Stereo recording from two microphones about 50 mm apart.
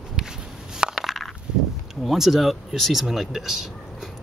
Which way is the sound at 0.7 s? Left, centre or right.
Centre.